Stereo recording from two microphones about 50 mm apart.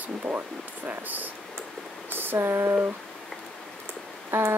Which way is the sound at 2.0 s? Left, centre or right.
Right.